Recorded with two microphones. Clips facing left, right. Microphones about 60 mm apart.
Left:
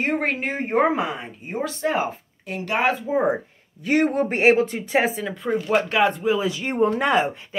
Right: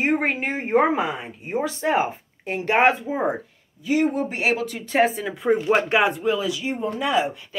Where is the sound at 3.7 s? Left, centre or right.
Left.